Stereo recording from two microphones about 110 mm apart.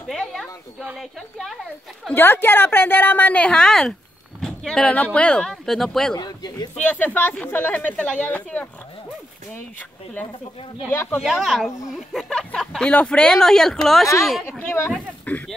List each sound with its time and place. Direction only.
0.0 s a sound: centre (ahead or behind)
0.9 s speech: centre (ahead or behind)
2.1 s speech: 20° left (ahead or behind); by 6.1 s 5° left (ahead or behind)
6.1 s speech: 40° left (ahead or behind)
6.7 s speech: 15° left (ahead or behind)
11.1 s speech: centre (ahead or behind)
14.6 s speech: 20° left (ahead or behind)